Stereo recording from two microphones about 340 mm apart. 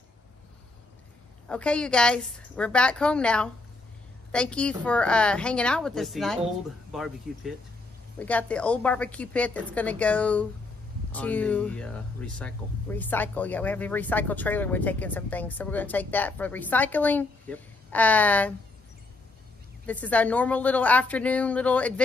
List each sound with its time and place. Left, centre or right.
1.5 s speech: centre
19.9 s speech: centre